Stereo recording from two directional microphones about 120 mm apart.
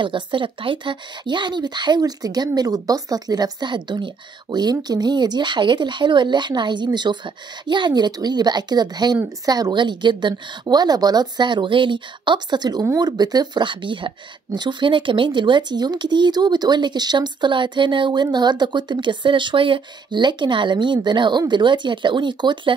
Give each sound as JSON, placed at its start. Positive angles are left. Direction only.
{"t": 0.0, "sound": "speech", "side_deg": -45}